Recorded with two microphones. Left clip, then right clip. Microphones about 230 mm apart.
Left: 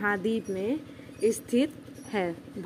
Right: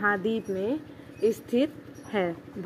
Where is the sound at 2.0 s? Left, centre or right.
Centre.